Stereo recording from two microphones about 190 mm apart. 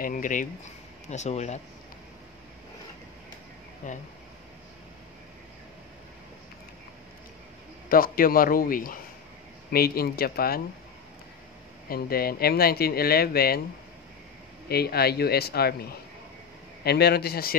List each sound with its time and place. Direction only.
0.0 s speech: 45° left (ahead or behind)
7.9 s speech: 50° left (ahead or behind)
11.9 s speech: 50° left (ahead or behind)
14.7 s a man's voice: 55° left (ahead or behind)